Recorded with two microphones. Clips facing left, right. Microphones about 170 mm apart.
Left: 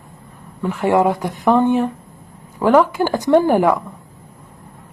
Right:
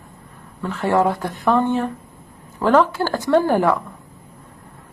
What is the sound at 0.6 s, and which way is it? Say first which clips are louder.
Speech: left 3 dB; 15° left (ahead or behind).